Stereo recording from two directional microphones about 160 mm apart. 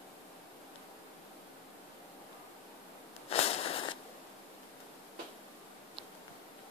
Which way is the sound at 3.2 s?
40° left (ahead or behind).